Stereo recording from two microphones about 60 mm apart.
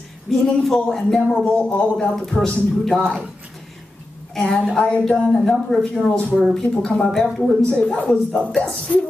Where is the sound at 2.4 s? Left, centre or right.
Centre.